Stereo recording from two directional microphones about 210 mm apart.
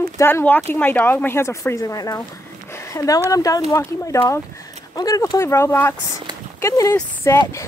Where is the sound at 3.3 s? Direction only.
15° left (ahead or behind).